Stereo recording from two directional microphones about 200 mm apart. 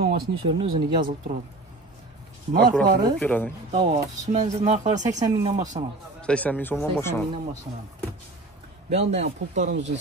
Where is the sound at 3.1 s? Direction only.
5° left (ahead or behind).